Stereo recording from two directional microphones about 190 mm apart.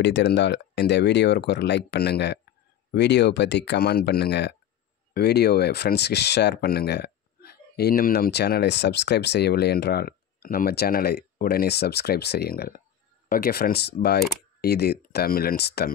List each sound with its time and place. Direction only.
0.0 s speech: 65° left (ahead or behind)